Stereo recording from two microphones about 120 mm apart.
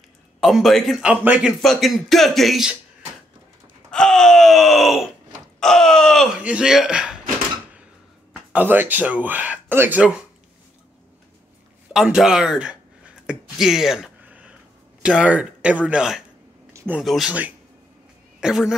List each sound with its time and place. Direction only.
0.4 s speech: centre (ahead or behind)
1.2 s speech: 15° right (ahead or behind)
1.6 s speech: centre (ahead or behind)
3.9 s groan: 5° left (ahead or behind)
6.4 s speech: 10° right (ahead or behind)
8.3 s speech: 15° right (ahead or behind)
11.9 s a sound: 5° right (ahead or behind)
15.0 s speech: 10° right (ahead or behind)
16.7 s a sound: 15° right (ahead or behind)
17.0 s speech: centre (ahead or behind)
17.3 s speech: 15° right (ahead or behind)